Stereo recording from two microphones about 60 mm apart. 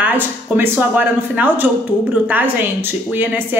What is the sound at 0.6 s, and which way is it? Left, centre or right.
A woman's voice, right.